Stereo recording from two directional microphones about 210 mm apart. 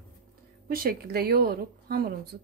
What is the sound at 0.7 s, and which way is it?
A woman's voice, 45° right (ahead or behind).